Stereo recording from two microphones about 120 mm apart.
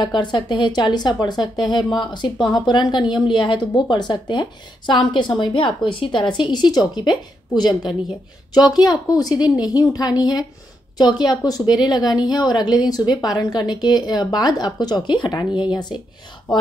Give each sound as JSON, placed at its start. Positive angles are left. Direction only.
{"t": 0.0, "sound": "a woman's voice", "side_deg": 40}